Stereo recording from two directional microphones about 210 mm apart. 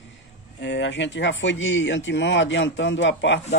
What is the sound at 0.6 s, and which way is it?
Speech, 60° left (ahead or behind).